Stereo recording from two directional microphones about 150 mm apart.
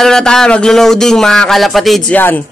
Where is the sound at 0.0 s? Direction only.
5° left (ahead or behind).